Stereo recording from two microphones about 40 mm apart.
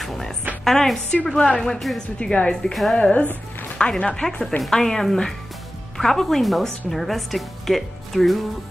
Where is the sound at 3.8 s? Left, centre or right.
Left.